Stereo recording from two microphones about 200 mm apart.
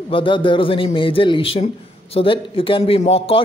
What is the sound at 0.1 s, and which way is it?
Speech, 25° left (ahead or behind).